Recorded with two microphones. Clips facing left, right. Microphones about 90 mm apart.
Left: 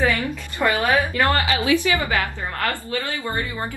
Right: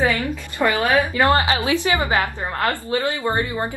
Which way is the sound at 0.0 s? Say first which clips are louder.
Right 1 dB; 20° right (ahead or behind).